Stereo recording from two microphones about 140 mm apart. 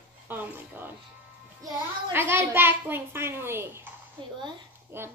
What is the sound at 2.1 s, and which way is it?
A child's voice, 15° right (ahead or behind).